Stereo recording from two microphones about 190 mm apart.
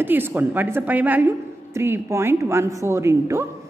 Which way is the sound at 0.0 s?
10° right (ahead or behind).